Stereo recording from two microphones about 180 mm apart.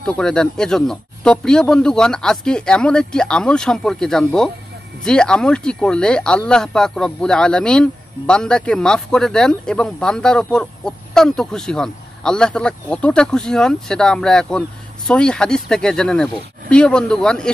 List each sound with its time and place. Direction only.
0.0 s speech: 5° left (ahead or behind)